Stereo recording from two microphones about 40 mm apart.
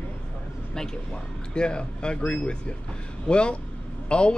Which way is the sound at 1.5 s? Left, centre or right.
Left.